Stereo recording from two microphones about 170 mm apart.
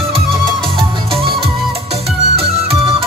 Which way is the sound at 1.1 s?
35° right (ahead or behind).